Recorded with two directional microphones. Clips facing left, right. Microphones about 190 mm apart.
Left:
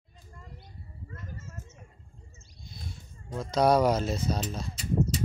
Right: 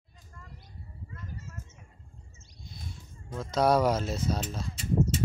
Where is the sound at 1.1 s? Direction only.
45° left (ahead or behind).